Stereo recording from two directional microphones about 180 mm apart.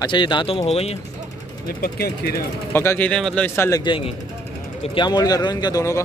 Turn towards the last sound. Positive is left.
turn(degrees=20)  # may be behind; listen again after turning